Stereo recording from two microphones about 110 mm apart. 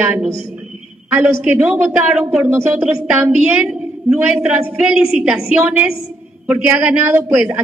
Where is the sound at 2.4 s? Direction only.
20° right (ahead or behind).